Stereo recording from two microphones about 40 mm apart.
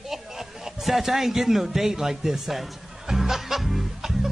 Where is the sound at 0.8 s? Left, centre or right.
Centre.